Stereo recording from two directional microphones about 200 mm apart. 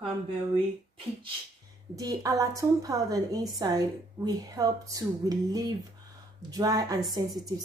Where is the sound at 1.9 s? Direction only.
15° right (ahead or behind).